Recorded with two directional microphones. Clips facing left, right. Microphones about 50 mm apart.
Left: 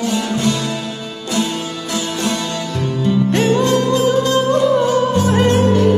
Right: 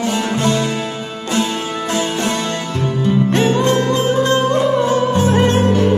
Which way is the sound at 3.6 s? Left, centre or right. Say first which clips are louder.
Left 1 dB; right.